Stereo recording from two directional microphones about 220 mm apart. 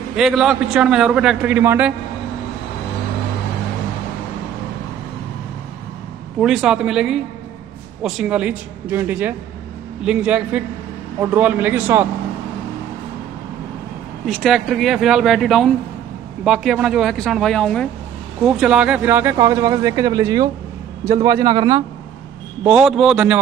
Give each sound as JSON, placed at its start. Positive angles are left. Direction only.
{"t": 0.1, "sound": "a man's voice", "side_deg": 0}
{"t": 6.4, "sound": "a man's voice", "side_deg": 0}
{"t": 14.2, "sound": "a man's voice", "side_deg": 0}
{"t": 22.6, "sound": "a man's voice", "side_deg": -5}